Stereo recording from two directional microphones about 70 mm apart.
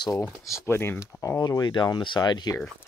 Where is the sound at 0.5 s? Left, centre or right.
Left.